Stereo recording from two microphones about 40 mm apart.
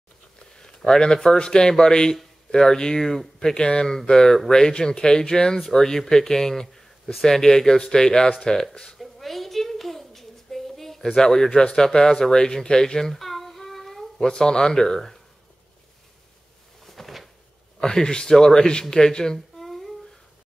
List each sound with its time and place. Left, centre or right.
0.6 s speech: centre
8.9 s a sound: centre
11.1 s speech: centre
14.2 s speech: centre
16.8 s a sound: centre
17.7 s speech: centre
19.3 s humming: centre